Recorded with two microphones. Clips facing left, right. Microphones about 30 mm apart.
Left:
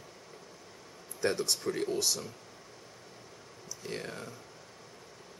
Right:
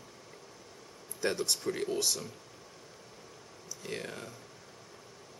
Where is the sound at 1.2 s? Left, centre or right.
Centre.